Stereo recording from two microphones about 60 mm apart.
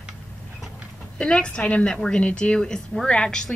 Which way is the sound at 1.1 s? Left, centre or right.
Centre.